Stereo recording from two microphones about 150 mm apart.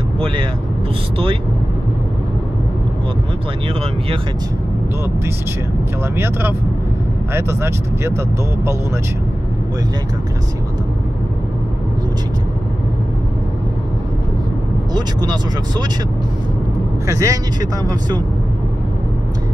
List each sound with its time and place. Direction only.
6.1 s speech: 15° right (ahead or behind)
17.1 s speech: 20° right (ahead or behind)